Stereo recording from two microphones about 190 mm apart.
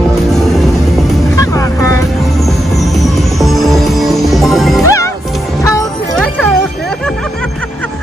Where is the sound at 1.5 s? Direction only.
15° left (ahead or behind).